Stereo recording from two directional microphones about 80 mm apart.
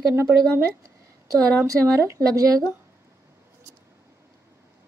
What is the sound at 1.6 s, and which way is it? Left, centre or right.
Speech, right.